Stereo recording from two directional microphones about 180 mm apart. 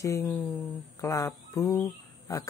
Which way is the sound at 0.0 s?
15° left (ahead or behind).